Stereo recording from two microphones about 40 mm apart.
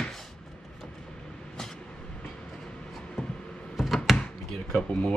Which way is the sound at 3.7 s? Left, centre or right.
Centre.